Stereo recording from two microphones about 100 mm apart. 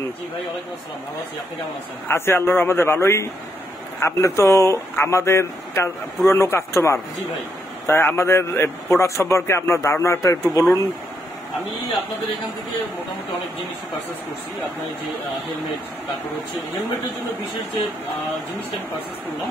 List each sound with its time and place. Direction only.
2.0 s speech: 25° left (ahead or behind)